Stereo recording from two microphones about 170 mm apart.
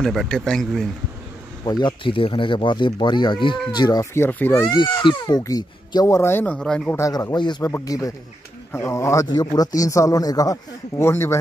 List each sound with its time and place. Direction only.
0.0 s speech: centre (ahead or behind)
1.6 s speech: 25° left (ahead or behind)
4.6 s speech: 25° left (ahead or behind); by 7.0 s 5° left (ahead or behind)
7.0 s speech: 20° left (ahead or behind)